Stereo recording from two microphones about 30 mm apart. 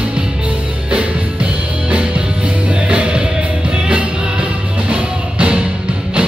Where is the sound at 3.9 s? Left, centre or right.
Right.